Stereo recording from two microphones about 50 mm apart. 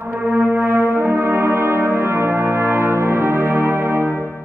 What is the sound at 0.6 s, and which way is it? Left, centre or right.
Brass instrument, right.